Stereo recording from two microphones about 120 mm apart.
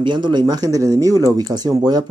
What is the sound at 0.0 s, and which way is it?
Speech, 40° right (ahead or behind).